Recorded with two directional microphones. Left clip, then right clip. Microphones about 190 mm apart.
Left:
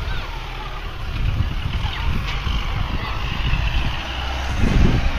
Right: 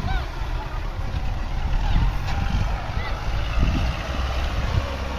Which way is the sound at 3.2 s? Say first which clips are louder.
Left 4 dB; 50° right (ahead or behind).